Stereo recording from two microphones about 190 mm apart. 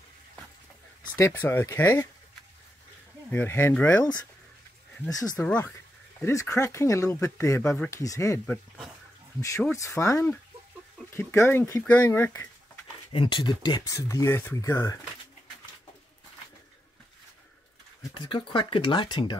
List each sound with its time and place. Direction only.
1.1 s speech: 10° left (ahead or behind)
3.3 s speech: 10° left (ahead or behind)
5.1 s speech: 20° left (ahead or behind)
13.1 s speech: 25° left (ahead or behind)
18.0 s speech: 20° left (ahead or behind)